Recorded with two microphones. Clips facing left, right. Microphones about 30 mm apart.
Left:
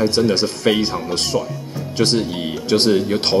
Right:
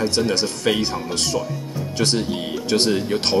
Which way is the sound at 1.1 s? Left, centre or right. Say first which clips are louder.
Left 3 dB; left.